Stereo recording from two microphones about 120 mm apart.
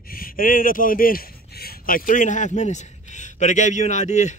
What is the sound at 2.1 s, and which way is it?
A man's voice, 90° left.